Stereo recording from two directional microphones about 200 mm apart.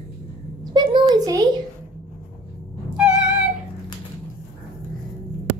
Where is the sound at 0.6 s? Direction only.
20° right (ahead or behind).